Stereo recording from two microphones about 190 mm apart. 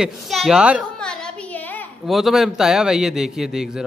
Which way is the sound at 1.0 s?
5° left (ahead or behind).